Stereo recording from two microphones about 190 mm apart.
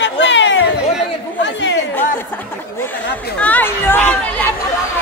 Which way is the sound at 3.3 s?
10° left (ahead or behind).